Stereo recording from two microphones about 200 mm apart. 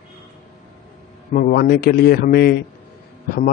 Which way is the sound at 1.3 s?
45° left (ahead or behind).